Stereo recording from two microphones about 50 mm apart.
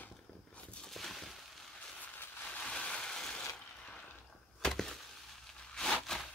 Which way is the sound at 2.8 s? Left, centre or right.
Centre.